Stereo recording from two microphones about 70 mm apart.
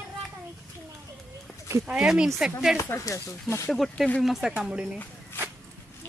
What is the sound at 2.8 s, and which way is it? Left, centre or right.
Speech, left.